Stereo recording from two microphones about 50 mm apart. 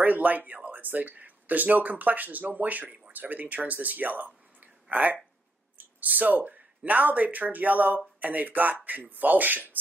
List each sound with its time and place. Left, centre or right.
0.0 s speech: right